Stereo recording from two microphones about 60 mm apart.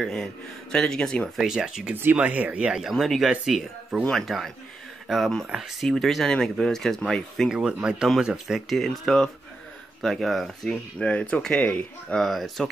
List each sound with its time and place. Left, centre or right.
0.1 s speech: centre
1.4 s speech: centre
2.1 s speech: right
2.9 s speech: centre
7.4 s speech: centre
8.7 s speech: centre
10.7 s speech: centre
12.2 s speech: centre